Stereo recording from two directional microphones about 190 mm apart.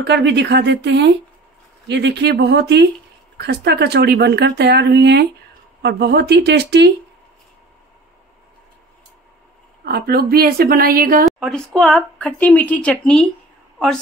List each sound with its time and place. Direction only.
0.0 s speech: 65° right (ahead or behind)
9.8 s a woman's voice: 55° right (ahead or behind)
11.2 s speech: centre (ahead or behind)